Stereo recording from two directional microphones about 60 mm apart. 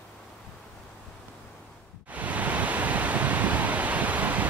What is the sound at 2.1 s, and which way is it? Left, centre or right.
Pink noise, right.